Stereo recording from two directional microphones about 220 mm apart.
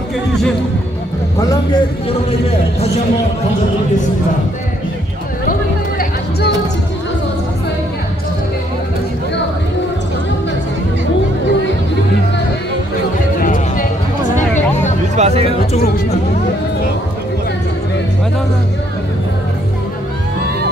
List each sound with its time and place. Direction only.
1.4 s speech: 15° left (ahead or behind)
5.5 s music: 40° left (ahead or behind)
13.4 s music: 40° left (ahead or behind)
15.1 s speech: 30° right (ahead or behind)